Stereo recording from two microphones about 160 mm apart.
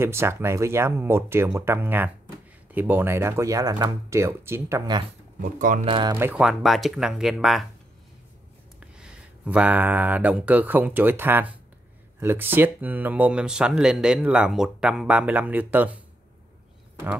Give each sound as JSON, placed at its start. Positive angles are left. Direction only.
{"t": 0.0, "sound": "speech", "side_deg": -15}
{"t": 5.4, "sound": "speech", "side_deg": -55}
{"t": 5.9, "sound": "speech", "side_deg": -30}
{"t": 6.1, "sound": "speech", "side_deg": -10}
{"t": 8.7, "sound": "speech", "side_deg": -5}